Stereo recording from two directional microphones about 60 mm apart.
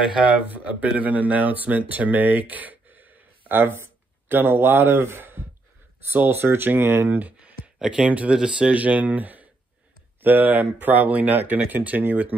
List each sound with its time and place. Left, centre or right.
0.1 s speech: right